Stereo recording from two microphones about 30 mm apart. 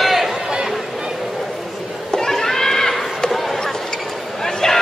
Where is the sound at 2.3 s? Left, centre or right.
Centre.